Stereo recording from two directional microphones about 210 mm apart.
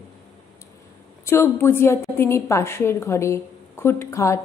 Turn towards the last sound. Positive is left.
turn(degrees=15)  # may be behind; listen again after turning